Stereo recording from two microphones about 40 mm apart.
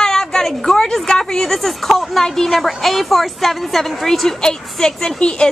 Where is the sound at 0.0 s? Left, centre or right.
Centre.